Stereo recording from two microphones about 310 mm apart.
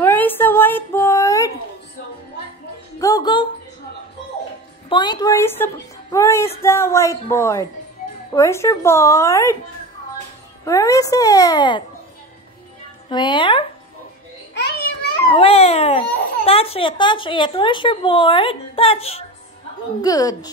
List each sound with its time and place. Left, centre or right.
0.0 s a sound: centre
3.0 s a woman's voice: centre
4.8 s a woman's voice: centre
10.6 s a woman's voice: centre
13.1 s a woman's voice: centre
14.5 s babbling: left
15.2 s a woman's voice: centre